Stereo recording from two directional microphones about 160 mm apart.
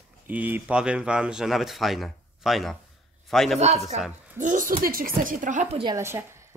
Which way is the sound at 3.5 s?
45° right (ahead or behind).